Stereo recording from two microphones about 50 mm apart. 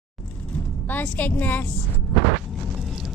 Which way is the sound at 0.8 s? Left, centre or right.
Left.